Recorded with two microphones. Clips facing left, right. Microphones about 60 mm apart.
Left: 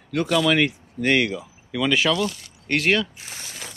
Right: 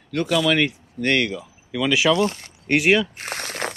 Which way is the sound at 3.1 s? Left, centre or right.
Right.